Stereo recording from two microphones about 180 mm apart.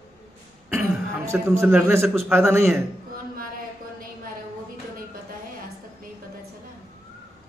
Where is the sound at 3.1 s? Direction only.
50° right (ahead or behind).